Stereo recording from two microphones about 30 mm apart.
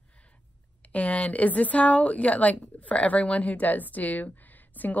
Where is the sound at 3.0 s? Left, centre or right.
Left.